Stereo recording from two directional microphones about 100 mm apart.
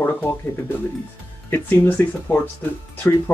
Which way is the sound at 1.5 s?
20° left (ahead or behind).